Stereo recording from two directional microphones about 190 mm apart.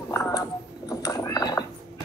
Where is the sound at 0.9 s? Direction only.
20° left (ahead or behind).